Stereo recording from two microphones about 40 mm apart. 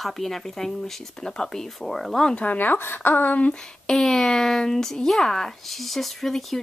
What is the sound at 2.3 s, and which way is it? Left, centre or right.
Speech, left.